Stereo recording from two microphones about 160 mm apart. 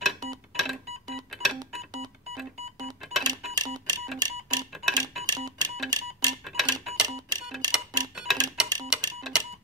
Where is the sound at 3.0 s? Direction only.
Centre (ahead or behind).